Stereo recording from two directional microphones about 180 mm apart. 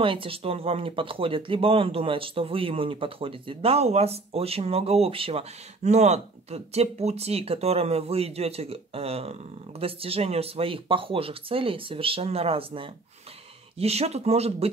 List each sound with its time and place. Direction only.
0.0 s speech: 30° right (ahead or behind)